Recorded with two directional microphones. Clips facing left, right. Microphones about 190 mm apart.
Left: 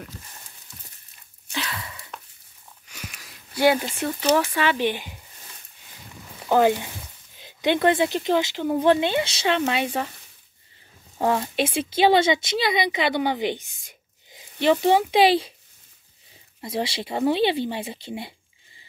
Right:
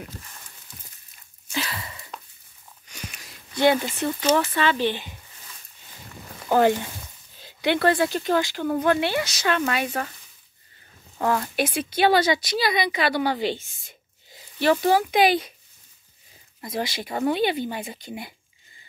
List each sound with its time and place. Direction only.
1.5 s a sound: 5° right (ahead or behind)
2.9 s speech: centre (ahead or behind)
6.5 s speech: 15° left (ahead or behind)
11.1 s speech: 25° left (ahead or behind)
16.6 s speech: 30° left (ahead or behind)